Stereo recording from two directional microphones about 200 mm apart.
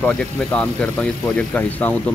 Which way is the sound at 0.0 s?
5° left (ahead or behind).